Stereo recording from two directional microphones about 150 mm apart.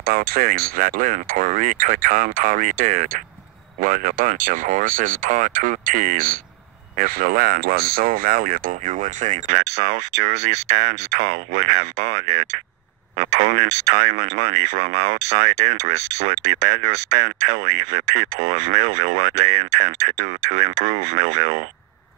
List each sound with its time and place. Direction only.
0.0 s speech: 85° right; by 21.6 s 50° right (ahead or behind)